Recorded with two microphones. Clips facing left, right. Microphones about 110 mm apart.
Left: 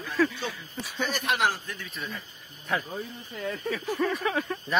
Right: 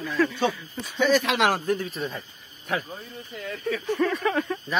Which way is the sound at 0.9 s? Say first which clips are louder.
Right 8 dB; 90° right.